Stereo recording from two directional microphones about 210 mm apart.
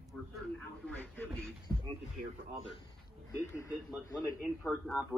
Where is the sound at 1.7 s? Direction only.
10° left (ahead or behind).